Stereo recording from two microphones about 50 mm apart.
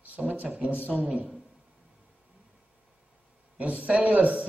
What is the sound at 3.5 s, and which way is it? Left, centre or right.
Speech, right.